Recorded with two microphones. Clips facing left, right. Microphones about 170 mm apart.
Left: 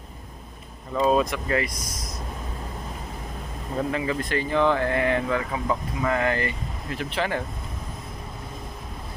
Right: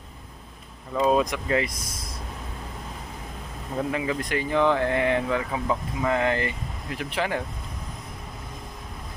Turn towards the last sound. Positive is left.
turn(degrees=-10)  # may be behind; listen again after turning